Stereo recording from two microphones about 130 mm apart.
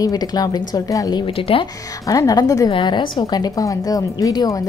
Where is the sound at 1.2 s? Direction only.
45° left (ahead or behind).